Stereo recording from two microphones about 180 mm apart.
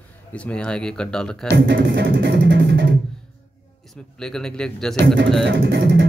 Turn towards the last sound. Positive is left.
turn(degrees=-90)